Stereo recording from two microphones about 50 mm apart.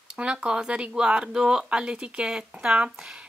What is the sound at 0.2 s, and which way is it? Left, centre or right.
Speech, right.